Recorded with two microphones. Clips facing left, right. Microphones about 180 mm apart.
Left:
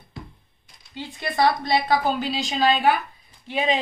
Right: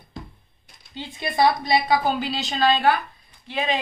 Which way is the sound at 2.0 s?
5° left (ahead or behind).